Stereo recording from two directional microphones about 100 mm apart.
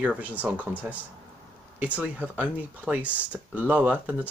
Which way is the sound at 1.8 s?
15° right (ahead or behind).